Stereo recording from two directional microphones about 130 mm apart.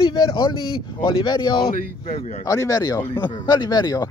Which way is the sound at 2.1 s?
45° left (ahead or behind).